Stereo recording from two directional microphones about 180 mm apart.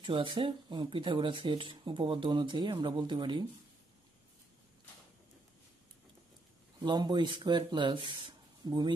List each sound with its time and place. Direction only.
0.0 s speech: 25° right (ahead or behind)
6.8 s speech: 25° right (ahead or behind)